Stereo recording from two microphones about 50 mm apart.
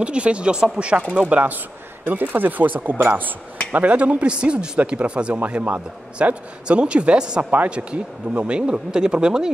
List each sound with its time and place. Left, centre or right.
0.0 s speech: right
1.3 s speech: right
3.7 s speech: right